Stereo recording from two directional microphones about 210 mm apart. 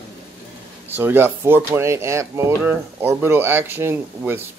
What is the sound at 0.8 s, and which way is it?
Speech, 10° right (ahead or behind).